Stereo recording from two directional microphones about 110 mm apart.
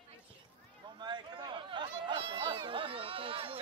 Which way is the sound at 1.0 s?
45° right (ahead or behind).